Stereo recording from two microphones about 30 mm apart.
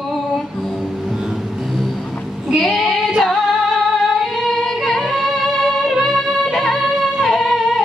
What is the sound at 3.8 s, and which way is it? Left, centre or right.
Music, centre.